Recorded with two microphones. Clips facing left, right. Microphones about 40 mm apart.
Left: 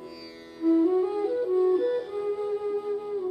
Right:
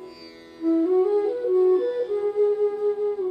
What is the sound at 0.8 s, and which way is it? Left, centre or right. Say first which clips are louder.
Music: right 4 dB; centre.